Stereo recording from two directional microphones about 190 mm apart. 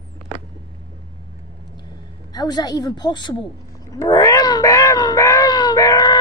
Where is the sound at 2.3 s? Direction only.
20° left (ahead or behind).